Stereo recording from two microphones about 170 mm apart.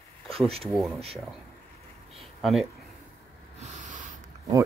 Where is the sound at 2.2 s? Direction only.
Centre (ahead or behind).